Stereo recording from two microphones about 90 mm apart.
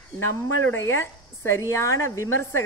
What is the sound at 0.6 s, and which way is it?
A woman's voice, 25° left (ahead or behind).